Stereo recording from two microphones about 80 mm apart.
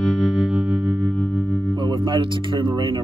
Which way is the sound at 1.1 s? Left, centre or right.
Centre.